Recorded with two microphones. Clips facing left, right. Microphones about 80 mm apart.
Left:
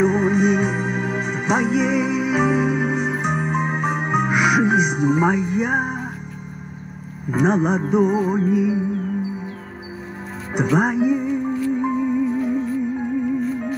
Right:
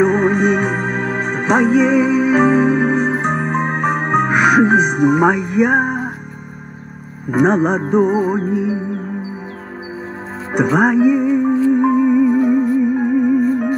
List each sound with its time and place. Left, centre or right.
0.0 s music: right
7.2 s music: right
10.5 s speech: right
11.2 s music: right
13.4 s music: right